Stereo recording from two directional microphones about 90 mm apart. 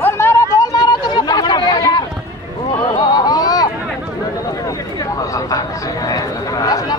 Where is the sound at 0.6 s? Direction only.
45° left (ahead or behind).